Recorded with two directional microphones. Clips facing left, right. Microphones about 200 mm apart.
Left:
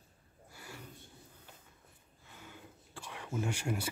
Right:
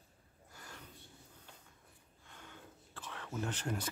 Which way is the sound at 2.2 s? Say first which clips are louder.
Left 2 dB; 5° left (ahead or behind).